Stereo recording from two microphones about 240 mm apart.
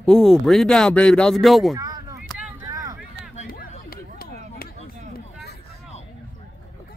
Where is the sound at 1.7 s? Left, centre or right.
Centre.